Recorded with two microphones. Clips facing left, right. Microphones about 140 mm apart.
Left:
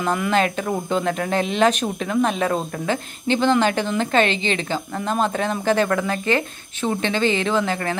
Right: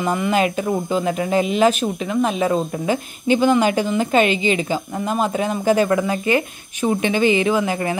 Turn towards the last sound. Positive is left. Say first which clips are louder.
# right 2 dB
turn(degrees=-15)  # may be behind; listen again after turning